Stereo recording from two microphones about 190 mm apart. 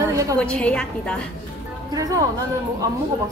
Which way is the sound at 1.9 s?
20° right (ahead or behind).